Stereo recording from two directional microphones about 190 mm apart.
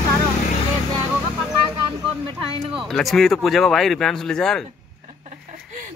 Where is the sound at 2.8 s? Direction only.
Centre (ahead or behind).